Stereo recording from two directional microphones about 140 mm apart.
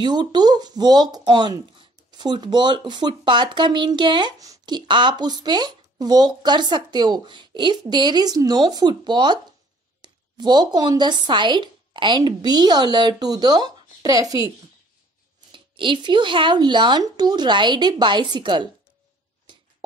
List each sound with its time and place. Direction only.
0.0 s speech: 30° right (ahead or behind)
15.5 s speech: 35° right (ahead or behind)